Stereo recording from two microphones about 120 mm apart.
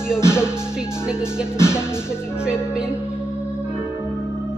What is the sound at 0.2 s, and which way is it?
Music, 20° left (ahead or behind).